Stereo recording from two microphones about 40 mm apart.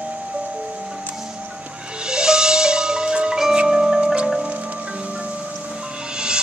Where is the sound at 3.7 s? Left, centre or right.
Centre.